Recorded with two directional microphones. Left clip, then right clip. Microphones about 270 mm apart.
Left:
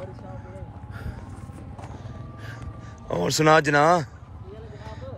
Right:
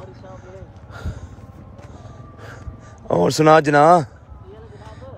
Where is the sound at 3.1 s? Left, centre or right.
Right.